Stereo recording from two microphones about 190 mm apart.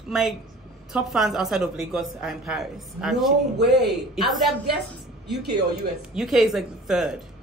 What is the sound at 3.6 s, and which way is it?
Speech, 60° right (ahead or behind).